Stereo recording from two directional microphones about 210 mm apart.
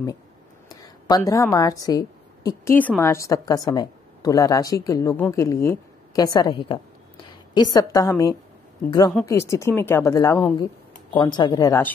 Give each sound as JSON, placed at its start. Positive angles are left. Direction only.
{"t": 0.7, "sound": "a woman's voice", "side_deg": 20}